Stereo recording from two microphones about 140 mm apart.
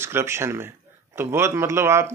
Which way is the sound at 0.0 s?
20° right (ahead or behind).